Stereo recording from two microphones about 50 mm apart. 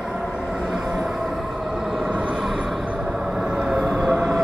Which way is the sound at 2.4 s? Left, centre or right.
Centre.